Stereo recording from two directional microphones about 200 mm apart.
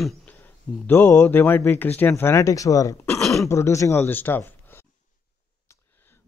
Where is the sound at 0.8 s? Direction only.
10° left (ahead or behind).